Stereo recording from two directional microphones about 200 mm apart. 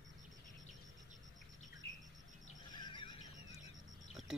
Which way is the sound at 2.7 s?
25° left (ahead or behind).